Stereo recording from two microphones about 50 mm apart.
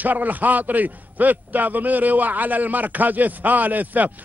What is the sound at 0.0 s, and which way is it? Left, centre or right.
A man's voice, right.